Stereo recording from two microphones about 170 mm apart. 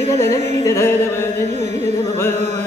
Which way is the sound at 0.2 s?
15° left (ahead or behind).